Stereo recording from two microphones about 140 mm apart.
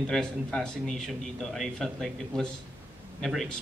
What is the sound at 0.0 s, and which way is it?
Speech, 5° left (ahead or behind).